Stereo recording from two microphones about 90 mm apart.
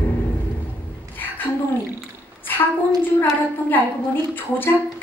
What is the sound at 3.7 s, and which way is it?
A woman's voice, 20° left (ahead or behind).